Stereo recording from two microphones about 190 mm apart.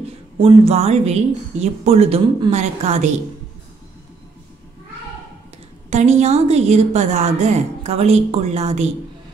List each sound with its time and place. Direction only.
0.4 s a woman's voice: 30° right (ahead or behind)
5.9 s a woman's voice: 35° right (ahead or behind)